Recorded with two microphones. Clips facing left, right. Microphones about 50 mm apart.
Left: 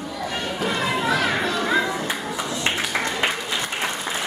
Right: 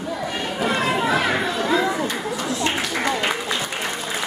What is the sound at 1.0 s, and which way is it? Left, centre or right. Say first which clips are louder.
Children playing: right 1 dB; centre.